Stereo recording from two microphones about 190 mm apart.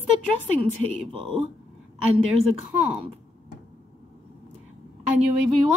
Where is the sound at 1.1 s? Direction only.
25° right (ahead or behind).